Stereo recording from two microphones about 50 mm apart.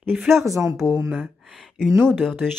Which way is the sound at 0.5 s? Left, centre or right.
Right.